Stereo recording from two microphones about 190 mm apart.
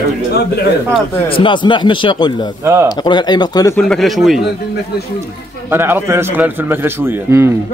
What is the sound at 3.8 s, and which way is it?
Speech, centre (ahead or behind).